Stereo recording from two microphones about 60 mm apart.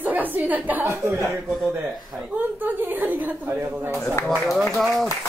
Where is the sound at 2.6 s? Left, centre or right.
Right.